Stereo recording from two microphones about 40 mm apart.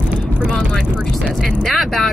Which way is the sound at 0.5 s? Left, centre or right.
Left.